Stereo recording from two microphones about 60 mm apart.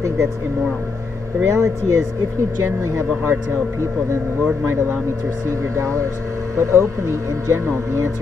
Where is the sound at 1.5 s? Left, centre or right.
Right.